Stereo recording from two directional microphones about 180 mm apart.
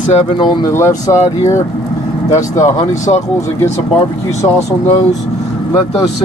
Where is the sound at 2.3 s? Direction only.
15° left (ahead or behind).